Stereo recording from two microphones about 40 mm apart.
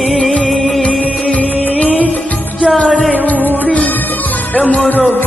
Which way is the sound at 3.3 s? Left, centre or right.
Left.